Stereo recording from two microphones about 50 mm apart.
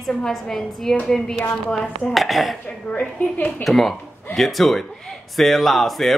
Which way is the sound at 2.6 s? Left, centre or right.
Left.